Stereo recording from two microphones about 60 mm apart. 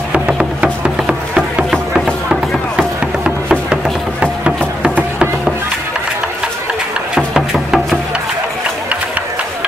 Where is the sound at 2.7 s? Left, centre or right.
Centre.